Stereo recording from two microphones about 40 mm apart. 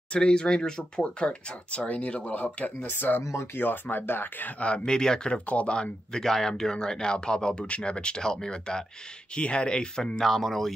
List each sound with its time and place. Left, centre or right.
0.1 s speech: left
1.2 s speech: left
2.3 s speech: left
4.6 s speech: left
5.3 s speech: left
5.8 s speech: centre
9.3 s speech: left
10.2 s speech: centre